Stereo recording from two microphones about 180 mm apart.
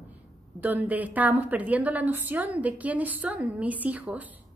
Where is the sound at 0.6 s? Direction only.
10° right (ahead or behind).